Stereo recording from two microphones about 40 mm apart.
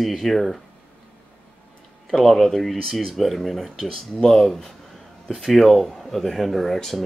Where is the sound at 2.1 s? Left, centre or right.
Centre.